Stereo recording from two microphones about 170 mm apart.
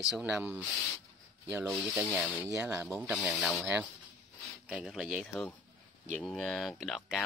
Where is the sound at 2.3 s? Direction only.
5° right (ahead or behind).